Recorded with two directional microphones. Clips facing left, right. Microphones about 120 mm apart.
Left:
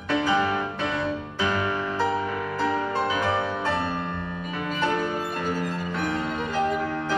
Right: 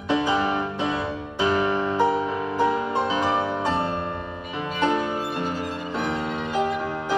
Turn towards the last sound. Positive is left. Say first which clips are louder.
# right 1 dB
turn(degrees=-20)  # may be behind; listen again after turning